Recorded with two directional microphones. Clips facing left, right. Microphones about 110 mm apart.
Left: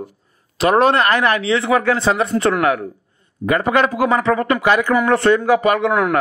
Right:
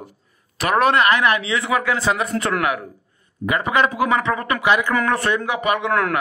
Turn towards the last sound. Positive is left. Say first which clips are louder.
# left 3 dB
turn(degrees=10)  # may be behind; listen again after turning